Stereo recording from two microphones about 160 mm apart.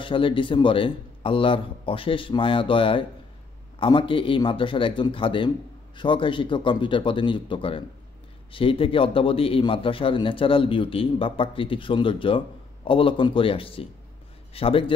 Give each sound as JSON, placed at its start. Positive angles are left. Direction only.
{"t": 0.0, "sound": "a man's voice", "side_deg": 30}